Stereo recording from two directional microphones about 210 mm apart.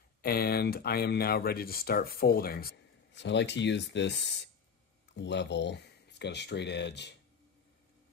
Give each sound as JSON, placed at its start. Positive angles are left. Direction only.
{"t": 0.2, "sound": "speech", "side_deg": 45}